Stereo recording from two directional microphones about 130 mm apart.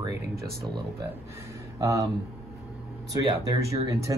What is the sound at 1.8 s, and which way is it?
Speech, 25° right (ahead or behind).